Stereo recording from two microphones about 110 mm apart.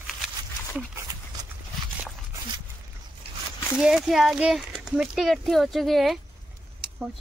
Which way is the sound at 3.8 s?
5° right (ahead or behind).